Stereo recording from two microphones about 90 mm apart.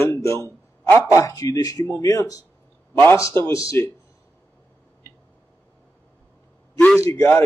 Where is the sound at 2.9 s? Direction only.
20° left (ahead or behind).